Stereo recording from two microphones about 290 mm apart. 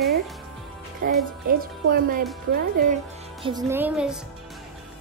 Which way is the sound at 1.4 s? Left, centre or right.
Right.